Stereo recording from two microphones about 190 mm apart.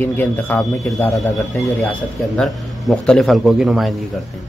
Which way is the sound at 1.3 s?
Centre (ahead or behind).